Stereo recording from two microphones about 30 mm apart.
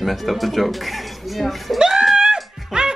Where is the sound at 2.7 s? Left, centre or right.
Right.